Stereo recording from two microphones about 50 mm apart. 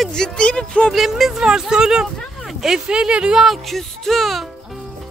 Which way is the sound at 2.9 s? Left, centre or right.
Centre.